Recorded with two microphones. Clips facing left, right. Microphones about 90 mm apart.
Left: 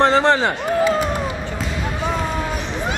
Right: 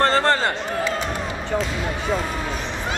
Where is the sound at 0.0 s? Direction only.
15° left (ahead or behind).